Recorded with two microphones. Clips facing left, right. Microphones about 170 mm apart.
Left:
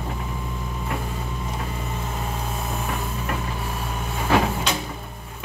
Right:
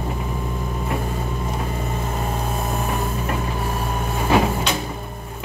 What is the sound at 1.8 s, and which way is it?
Vehicle, 45° right (ahead or behind).